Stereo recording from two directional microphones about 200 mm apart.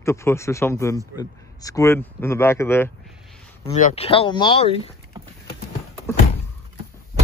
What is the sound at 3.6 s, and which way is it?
Speech, 35° left (ahead or behind).